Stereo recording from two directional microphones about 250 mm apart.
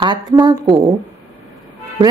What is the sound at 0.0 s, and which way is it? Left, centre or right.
Speech, centre.